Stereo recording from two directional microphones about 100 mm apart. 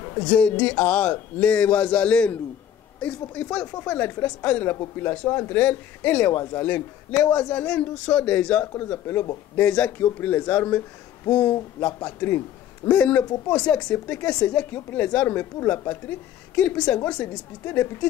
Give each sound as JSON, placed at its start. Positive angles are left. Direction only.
{"t": 0.0, "sound": "a sound", "side_deg": 30}
{"t": 0.4, "sound": "a man's voice", "side_deg": 10}
{"t": 9.6, "sound": "a man's voice", "side_deg": 15}
{"t": 11.8, "sound": "a man's voice", "side_deg": 20}